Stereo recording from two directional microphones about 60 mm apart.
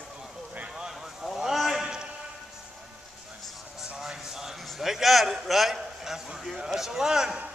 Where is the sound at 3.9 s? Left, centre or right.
Centre.